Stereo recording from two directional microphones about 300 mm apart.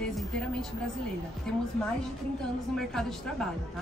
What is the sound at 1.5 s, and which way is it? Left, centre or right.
Speech, centre.